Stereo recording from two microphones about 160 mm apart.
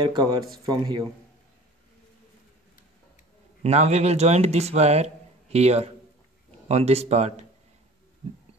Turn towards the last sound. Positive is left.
turn(degrees=-40)  # may be behind; listen again after turning